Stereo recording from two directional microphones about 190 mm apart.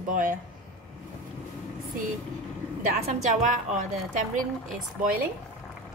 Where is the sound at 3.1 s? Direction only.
40° right (ahead or behind).